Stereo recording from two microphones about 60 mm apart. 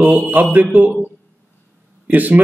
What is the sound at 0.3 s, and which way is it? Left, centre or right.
Speech, right.